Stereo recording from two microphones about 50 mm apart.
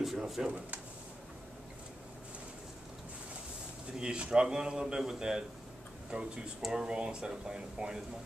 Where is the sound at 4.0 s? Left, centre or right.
Centre.